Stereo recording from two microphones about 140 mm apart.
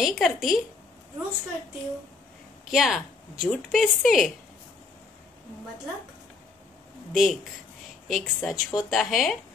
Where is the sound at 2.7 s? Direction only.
Centre (ahead or behind).